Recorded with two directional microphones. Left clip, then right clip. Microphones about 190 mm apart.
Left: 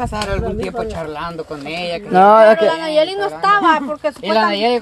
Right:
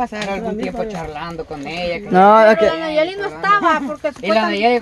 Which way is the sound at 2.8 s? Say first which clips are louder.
Left 3 dB; 35° left (ahead or behind).